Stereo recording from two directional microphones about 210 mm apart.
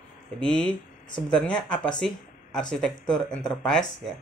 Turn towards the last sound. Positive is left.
turn(degrees=5)  # may be behind; listen again after turning